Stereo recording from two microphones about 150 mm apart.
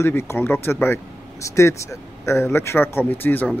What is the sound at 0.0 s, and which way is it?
Speech, 15° left (ahead or behind).